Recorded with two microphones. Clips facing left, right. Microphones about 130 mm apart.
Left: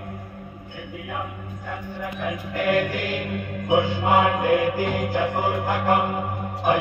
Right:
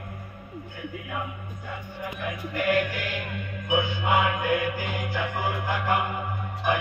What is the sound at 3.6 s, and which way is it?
Music, 40° left (ahead or behind).